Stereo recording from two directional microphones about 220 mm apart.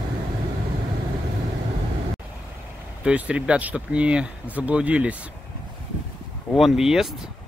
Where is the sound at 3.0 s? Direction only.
5° right (ahead or behind).